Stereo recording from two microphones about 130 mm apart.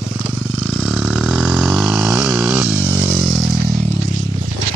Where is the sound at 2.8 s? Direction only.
20° right (ahead or behind).